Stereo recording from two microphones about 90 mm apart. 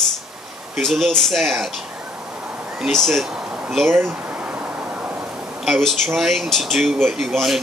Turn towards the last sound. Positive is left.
turn(degrees=0)  # may be behind; listen again after turning